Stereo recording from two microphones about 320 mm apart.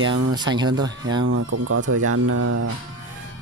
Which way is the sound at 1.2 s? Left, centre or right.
Right.